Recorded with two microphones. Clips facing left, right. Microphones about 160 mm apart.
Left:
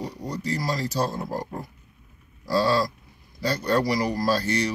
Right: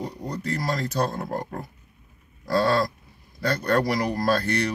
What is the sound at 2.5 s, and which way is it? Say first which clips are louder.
Speech: even; 55° right (ahead or behind).